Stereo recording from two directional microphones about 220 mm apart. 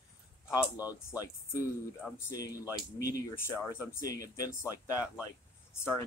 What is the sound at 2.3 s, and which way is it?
Speech, 15° left (ahead or behind).